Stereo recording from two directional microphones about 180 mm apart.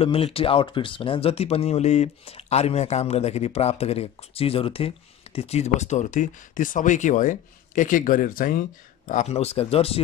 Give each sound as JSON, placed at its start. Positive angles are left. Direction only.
{"t": 0.0, "sound": "speech", "side_deg": 30}